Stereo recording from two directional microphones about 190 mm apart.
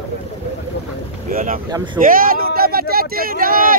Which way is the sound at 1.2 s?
45° right (ahead or behind).